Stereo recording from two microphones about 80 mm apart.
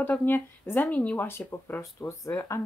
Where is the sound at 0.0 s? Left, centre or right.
Left.